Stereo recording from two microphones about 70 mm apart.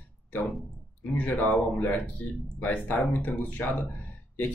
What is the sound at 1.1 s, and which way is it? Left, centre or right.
Speech, left.